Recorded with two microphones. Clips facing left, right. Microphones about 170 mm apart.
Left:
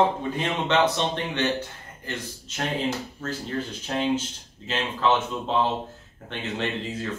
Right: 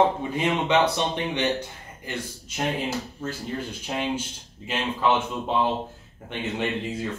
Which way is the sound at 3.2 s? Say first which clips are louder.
Left 1 dB; 10° right (ahead or behind).